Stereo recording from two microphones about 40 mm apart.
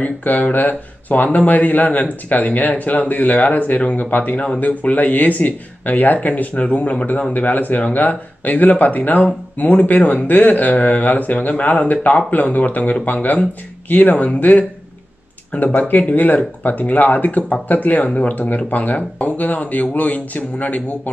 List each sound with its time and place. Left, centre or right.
0.2 s speech: left
7.3 s speech: left